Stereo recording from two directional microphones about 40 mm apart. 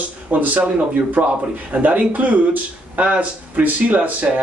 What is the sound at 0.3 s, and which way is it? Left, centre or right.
Speech, right.